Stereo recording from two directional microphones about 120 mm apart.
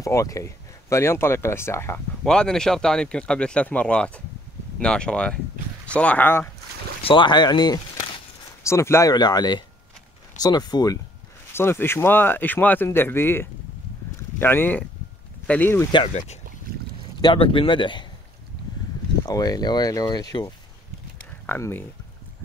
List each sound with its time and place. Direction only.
0.0 s speech: 25° left (ahead or behind)
2.2 s speech: 5° left (ahead or behind)
7.0 s speech: 45° left (ahead or behind)
8.6 s speech: 20° left (ahead or behind)
9.1 s speech: 35° left (ahead or behind)
11.5 s speech: 20° left (ahead or behind)
17.2 s speech: 45° left (ahead or behind)
19.2 s speech: 30° left (ahead or behind)
21.5 s speech: 20° left (ahead or behind)